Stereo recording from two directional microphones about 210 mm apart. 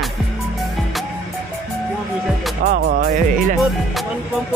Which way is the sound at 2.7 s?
45° right (ahead or behind).